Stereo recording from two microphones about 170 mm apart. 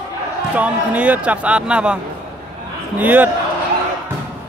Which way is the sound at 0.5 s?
10° right (ahead or behind).